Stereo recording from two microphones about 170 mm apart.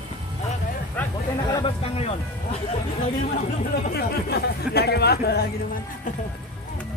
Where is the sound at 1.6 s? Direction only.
35° left (ahead or behind).